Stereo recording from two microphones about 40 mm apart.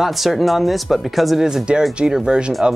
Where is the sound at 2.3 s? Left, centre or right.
Right.